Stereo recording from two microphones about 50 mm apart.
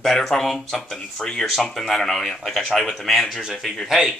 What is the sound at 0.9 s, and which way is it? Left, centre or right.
Speech, centre.